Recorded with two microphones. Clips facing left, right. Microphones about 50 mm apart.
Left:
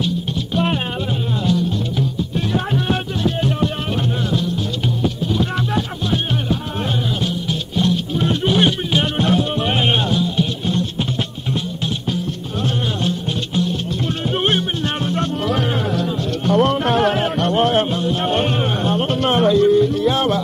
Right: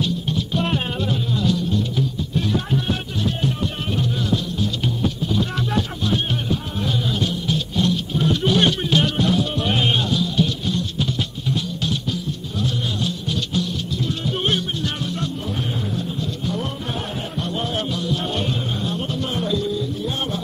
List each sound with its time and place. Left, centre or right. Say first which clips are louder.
1.4 s music: left 3 dB; left
2.5 s music: left 6 dB; left
7.2 s music: left 1 dB; centre
9.0 s music: left 2 dB; left
13.6 s music: left 4 dB; left
15.4 s music: left 7 dB; left
16.4 s music: left 14 dB; left
17.9 s music: left 5 dB; left